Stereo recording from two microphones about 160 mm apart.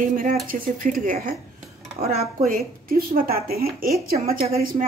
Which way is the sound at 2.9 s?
65° right (ahead or behind).